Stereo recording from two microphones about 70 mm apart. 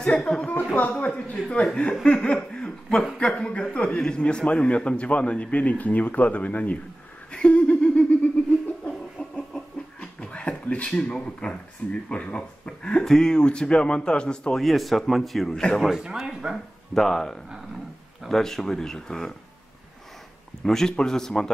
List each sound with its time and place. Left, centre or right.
0.0 s a man's voice: centre
2.0 s laughter: centre
3.2 s a man's voice: centre
7.2 s a sound: centre
10.9 s a man's voice: centre
14.6 s speech: centre
15.9 s a man's voice: centre
20.6 s a man's voice: centre